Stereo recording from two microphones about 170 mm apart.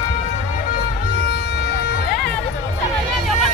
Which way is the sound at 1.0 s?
70° left (ahead or behind).